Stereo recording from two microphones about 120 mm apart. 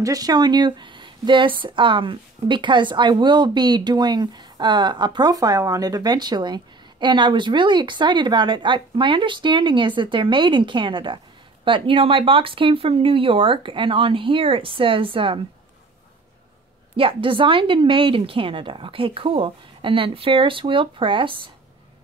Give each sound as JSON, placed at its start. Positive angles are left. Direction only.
{"t": 0.0, "sound": "a woman's voice", "side_deg": -30}
{"t": 16.9, "sound": "a woman's voice", "side_deg": -45}